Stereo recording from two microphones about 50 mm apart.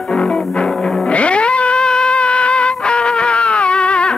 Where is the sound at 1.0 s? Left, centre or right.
Left.